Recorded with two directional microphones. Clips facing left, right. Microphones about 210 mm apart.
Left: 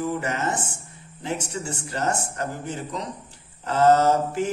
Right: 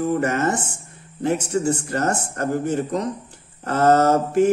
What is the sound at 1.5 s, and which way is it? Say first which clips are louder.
Speech: right 9 dB; 50° right (ahead or behind).